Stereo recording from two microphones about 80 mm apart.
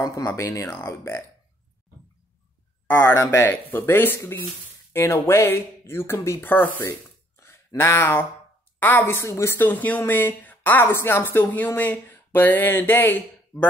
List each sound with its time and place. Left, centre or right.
0.0 s speech: left
0.4 s speech: left
3.2 s speech: left